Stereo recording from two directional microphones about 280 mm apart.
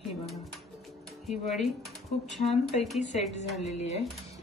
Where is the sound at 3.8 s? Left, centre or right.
Left.